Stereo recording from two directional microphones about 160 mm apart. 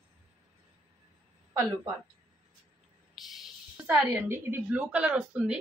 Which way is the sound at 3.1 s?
Centre (ahead or behind).